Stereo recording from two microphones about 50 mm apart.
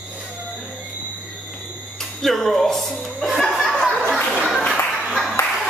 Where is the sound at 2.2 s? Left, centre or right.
Centre.